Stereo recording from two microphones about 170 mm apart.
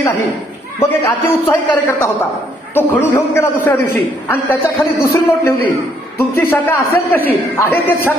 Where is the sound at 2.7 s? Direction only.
15° left (ahead or behind).